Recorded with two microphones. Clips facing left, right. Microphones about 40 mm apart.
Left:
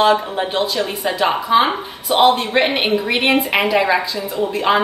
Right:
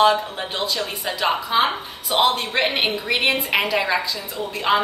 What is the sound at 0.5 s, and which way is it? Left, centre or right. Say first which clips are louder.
A woman's voice: left 5 dB; centre.